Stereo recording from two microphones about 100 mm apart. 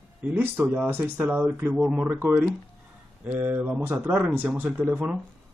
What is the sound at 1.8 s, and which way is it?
Speech, 5° right (ahead or behind).